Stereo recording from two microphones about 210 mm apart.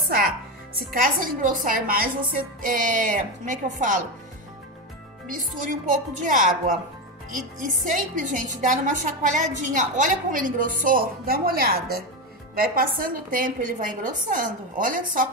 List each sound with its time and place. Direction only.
0.7 s a woman's voice: 45° right (ahead or behind)
6.2 s a woman's voice: 40° right (ahead or behind)